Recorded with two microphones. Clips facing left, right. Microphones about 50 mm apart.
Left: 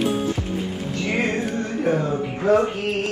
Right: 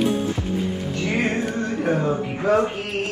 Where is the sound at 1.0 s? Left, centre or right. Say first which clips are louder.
Even; right.